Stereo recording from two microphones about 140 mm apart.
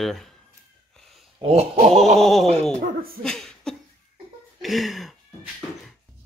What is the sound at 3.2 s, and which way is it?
Chuckle, 5° left (ahead or behind).